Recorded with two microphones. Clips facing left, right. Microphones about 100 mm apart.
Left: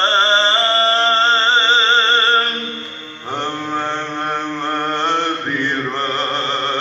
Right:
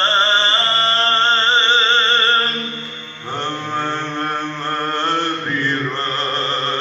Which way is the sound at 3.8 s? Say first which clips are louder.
Right 2 dB; 30° left (ahead or behind).